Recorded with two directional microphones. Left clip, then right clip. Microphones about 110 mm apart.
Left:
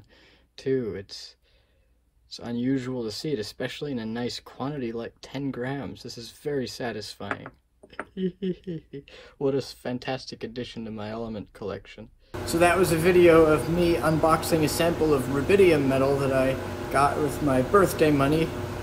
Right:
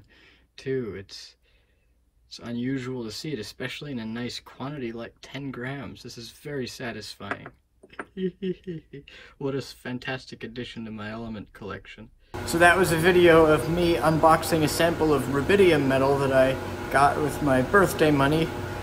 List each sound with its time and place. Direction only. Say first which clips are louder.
0.6 s speech: left 3 dB; 15° left (ahead or behind)
2.3 s speech: left 3 dB; 15° left (ahead or behind)
12.4 s a man's voice: right 2 dB; 40° right (ahead or behind)